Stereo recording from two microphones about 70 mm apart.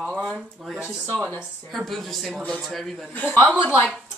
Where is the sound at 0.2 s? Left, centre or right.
Centre.